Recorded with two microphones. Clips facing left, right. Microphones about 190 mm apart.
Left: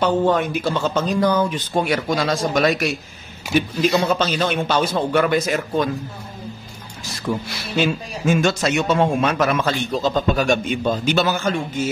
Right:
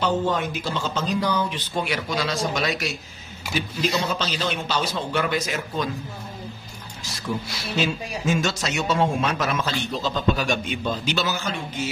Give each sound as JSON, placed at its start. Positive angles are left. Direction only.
{"t": 0.0, "sound": "a man's voice", "side_deg": 55}
{"t": 7.3, "sound": "a man's voice", "side_deg": 60}